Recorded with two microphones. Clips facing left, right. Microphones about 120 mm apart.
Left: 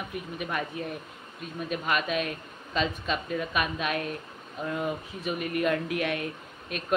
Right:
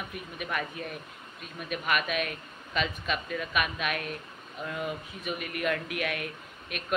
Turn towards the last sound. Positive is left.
turn(degrees=25)  # may be behind; listen again after turning